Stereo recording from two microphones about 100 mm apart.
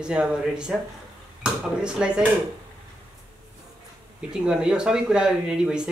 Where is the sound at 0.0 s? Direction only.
10° right (ahead or behind).